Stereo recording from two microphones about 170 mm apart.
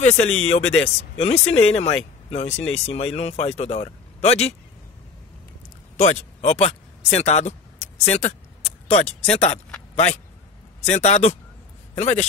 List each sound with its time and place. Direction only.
0.0 s speech: 40° left (ahead or behind)
5.9 s speech: 40° left (ahead or behind)
10.9 s speech: 40° left (ahead or behind)